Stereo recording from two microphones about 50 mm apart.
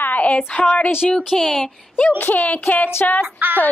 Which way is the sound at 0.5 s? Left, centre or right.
Left.